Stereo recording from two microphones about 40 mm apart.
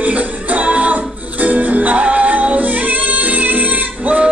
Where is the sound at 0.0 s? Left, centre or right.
Right.